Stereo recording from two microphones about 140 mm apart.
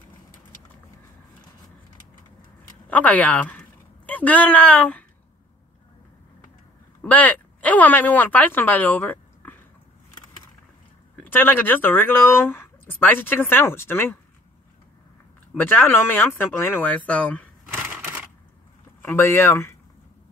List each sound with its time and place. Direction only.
2.9 s a woman's voice: 10° left (ahead or behind)
7.0 s speech: 10° left (ahead or behind)
11.2 s speech: 15° left (ahead or behind)
15.5 s speech: 15° left (ahead or behind)
17.7 s a sound: 10° right (ahead or behind)
19.0 s speech: 15° left (ahead or behind)